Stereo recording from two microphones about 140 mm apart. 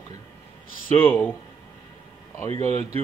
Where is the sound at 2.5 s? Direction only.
50° right (ahead or behind).